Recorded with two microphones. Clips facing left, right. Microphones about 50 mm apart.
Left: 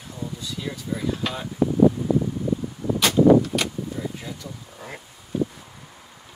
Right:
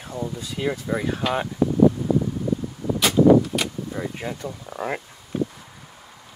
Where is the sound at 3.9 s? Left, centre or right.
Right.